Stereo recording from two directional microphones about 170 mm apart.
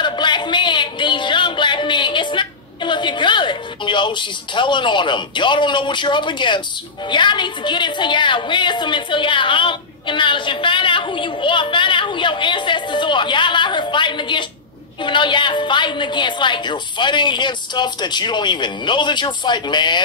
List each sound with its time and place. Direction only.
0.0 s music: 25° left (ahead or behind)
7.1 s a woman's voice: 25° left (ahead or behind)